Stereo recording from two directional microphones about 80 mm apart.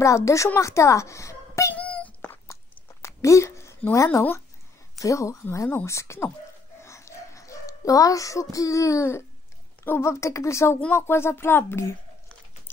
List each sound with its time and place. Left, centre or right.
0.0 s a child's voice: left
1.7 s wail: centre
2.4 s chewing: left
3.9 s a child's voice: left
6.8 s a sound: left
9.8 s a child's voice: left